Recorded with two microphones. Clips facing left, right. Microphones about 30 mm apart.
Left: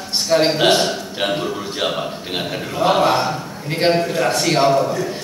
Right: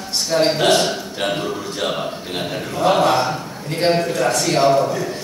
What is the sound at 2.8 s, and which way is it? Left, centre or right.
A man's voice, centre.